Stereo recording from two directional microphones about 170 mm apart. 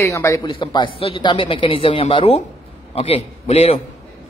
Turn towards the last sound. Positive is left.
turn(degrees=40)  # may be behind; listen again after turning